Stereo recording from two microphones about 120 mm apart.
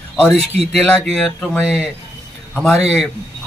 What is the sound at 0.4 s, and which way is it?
Speech, 55° right (ahead or behind).